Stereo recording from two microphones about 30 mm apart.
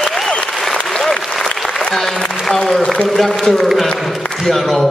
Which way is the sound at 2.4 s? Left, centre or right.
Centre.